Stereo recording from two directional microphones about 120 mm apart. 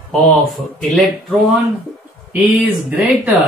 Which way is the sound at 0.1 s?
5° left (ahead or behind).